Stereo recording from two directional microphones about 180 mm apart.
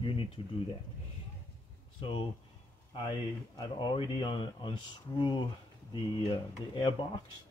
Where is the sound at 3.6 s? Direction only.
25° left (ahead or behind).